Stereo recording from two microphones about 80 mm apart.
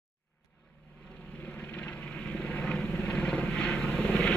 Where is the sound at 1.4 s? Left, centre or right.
Centre.